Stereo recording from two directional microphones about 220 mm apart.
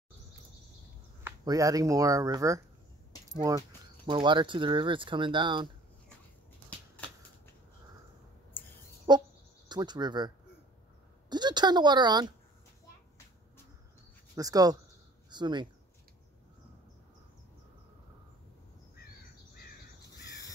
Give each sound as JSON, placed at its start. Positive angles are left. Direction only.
{"t": 1.2, "sound": "speech", "side_deg": -15}
{"t": 9.1, "sound": "bird", "side_deg": -20}
{"t": 9.7, "sound": "speech", "side_deg": -20}
{"t": 14.3, "sound": "speech", "side_deg": -15}